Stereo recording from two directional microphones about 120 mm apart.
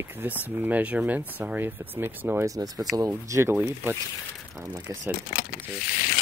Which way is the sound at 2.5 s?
30° right (ahead or behind).